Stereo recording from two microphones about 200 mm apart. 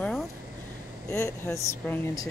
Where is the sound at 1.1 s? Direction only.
15° left (ahead or behind).